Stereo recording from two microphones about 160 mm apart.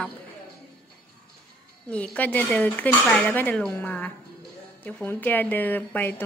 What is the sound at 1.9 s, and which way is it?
Speech, 10° left (ahead or behind).